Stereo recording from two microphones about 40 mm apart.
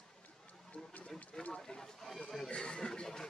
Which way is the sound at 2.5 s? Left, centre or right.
Left.